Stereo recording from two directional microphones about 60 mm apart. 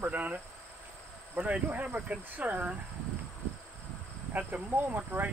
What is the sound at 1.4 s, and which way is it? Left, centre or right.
Speech, right.